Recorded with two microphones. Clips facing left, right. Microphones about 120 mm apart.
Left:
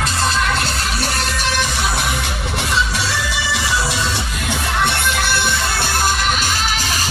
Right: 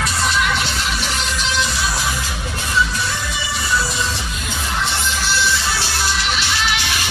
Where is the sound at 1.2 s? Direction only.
55° left (ahead or behind).